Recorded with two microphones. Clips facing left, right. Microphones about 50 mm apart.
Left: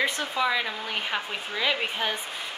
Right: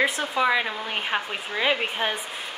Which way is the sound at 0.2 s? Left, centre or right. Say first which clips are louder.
Right 3 dB; right.